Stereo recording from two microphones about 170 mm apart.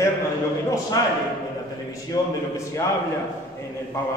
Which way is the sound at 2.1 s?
20° left (ahead or behind).